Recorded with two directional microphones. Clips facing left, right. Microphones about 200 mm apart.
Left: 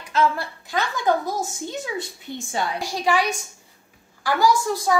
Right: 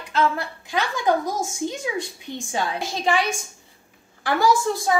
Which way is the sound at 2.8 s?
20° right (ahead or behind).